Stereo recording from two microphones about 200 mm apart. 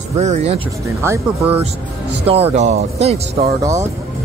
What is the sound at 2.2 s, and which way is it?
Speech, 30° right (ahead or behind).